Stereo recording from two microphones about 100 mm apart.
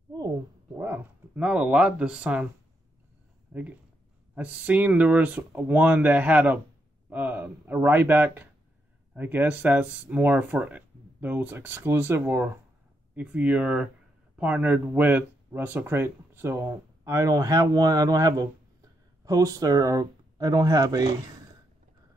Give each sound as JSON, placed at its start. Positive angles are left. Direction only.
{"t": 0.7, "sound": "speech", "side_deg": -20}
{"t": 3.5, "sound": "speech", "side_deg": -15}